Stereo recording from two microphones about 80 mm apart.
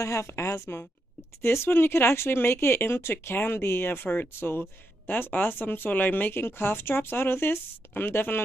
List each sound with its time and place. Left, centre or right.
0.0 s a woman's voice: left